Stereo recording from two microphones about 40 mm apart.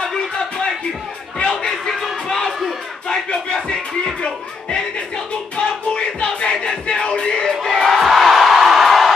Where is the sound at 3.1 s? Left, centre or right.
Centre.